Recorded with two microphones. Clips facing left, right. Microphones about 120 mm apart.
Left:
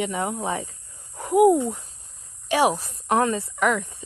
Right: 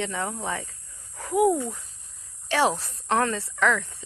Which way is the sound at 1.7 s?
35° left (ahead or behind).